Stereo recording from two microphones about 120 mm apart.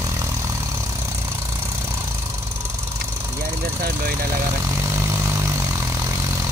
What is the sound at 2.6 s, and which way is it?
Engine knocking, 20° right (ahead or behind).